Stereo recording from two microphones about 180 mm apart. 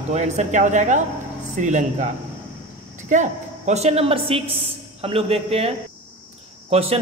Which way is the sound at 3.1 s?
40° right (ahead or behind).